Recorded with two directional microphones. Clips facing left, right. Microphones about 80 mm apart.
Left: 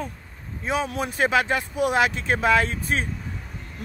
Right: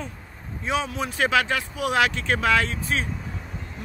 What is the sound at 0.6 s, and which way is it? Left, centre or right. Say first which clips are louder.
Speech: left 1 dB; left.